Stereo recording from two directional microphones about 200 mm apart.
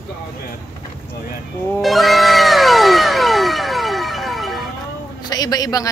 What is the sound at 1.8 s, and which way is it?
Cat, centre (ahead or behind).